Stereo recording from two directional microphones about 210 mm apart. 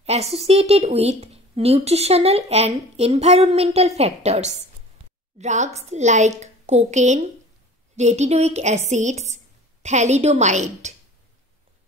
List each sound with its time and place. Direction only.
0.0 s a woman's voice: 30° right (ahead or behind)